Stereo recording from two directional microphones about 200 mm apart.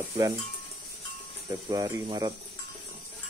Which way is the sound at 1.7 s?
20° right (ahead or behind).